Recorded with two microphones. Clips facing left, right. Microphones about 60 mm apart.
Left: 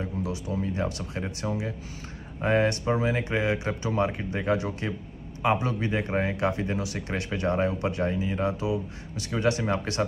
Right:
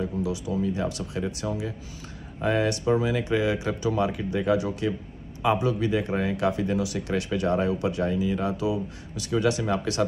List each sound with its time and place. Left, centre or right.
0.0 s speech: left